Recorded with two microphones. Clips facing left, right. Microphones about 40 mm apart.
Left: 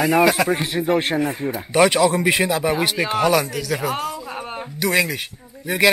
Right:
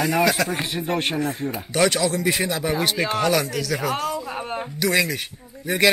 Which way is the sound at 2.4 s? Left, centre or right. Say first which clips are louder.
Left 3 dB; centre.